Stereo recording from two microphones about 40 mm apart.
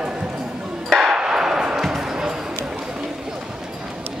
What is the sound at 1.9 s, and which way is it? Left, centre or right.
Music, centre.